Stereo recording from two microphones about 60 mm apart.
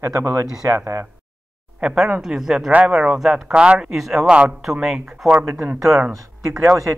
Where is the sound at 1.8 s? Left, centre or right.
Centre.